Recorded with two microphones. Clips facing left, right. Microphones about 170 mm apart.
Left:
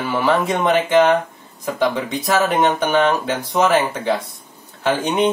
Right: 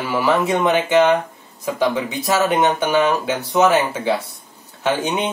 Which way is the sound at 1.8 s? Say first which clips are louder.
Even; 5° right (ahead or behind).